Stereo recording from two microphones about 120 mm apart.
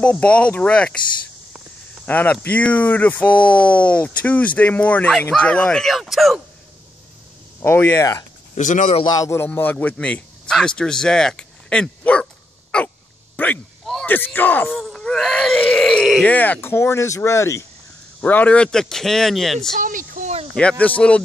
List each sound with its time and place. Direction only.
0.0 s speech: 10° left (ahead or behind)
2.0 s speech: 15° left (ahead or behind); by 6.4 s centre (ahead or behind)
7.6 s speech: 20° left (ahead or behind)
8.5 s speech: 90° left
9.0 s speech: 30° left (ahead or behind)
9.5 s speech: 15° left (ahead or behind)
12.7 s hiccup: 10° left (ahead or behind)
13.4 s a sound: 15° left (ahead or behind)
14.0 s speech: 15° left (ahead or behind)
14.8 s groan: 5° left (ahead or behind)
16.3 s speech: 15° left (ahead or behind)
18.2 s speech: 15° left (ahead or behind)
19.8 s a sound: 80° right
20.5 s speech: 10° left (ahead or behind)